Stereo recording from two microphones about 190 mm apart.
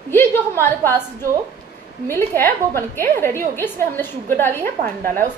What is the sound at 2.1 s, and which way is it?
A woman's voice, 10° left (ahead or behind).